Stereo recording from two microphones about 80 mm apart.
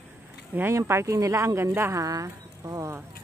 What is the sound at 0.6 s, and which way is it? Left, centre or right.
Speech, right.